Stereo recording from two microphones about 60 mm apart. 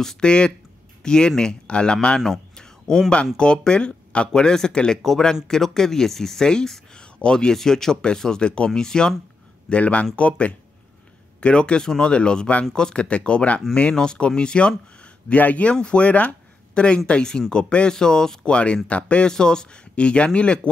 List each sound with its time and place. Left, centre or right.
0.0 s speech: centre
2.5 s a sound: centre
3.3 s speech: centre